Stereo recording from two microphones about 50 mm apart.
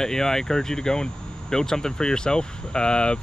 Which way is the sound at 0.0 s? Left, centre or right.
Centre.